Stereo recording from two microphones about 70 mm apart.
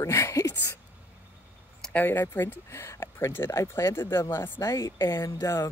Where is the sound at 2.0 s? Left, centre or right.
Left.